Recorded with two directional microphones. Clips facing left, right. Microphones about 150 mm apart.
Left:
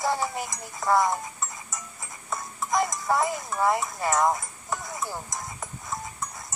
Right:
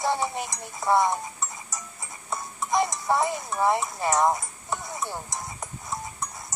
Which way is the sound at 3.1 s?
Centre (ahead or behind).